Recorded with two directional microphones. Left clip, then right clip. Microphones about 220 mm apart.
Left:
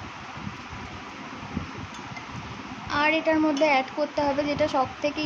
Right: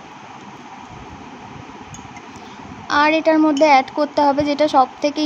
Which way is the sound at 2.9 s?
25° right (ahead or behind).